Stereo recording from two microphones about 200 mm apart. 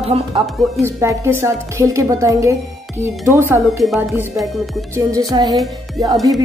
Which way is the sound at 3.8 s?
Centre (ahead or behind).